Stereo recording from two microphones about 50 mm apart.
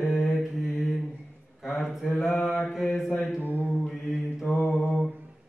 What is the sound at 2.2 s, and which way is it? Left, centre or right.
Mantra, centre.